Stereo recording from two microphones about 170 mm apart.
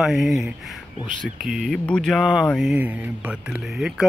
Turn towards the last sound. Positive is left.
turn(degrees=-5)  # may be behind; listen again after turning